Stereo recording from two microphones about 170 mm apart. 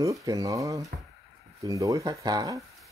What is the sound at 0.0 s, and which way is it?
Speech, 20° right (ahead or behind).